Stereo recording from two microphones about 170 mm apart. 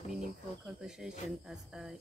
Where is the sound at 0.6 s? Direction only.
5° right (ahead or behind).